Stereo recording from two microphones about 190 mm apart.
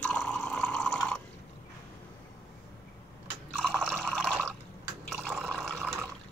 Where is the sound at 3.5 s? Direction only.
5° left (ahead or behind).